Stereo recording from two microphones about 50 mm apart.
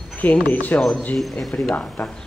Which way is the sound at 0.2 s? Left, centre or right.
Left.